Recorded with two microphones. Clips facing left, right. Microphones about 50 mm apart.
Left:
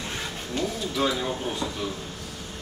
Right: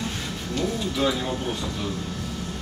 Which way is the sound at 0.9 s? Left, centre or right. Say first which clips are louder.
Even; centre.